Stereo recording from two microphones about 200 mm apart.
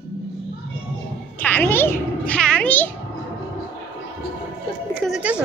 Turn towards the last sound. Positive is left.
turn(degrees=-5)  # may be behind; listen again after turning